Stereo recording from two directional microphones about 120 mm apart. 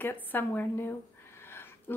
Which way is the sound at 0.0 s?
15° left (ahead or behind).